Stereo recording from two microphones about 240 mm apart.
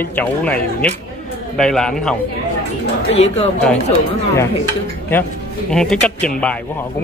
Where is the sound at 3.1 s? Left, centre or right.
Left.